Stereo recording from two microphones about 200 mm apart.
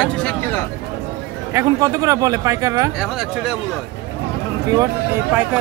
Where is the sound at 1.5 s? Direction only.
15° right (ahead or behind).